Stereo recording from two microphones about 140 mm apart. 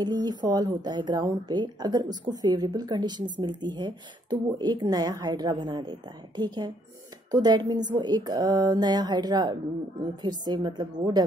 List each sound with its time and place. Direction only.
0.0 s a woman's voice: 30° right (ahead or behind)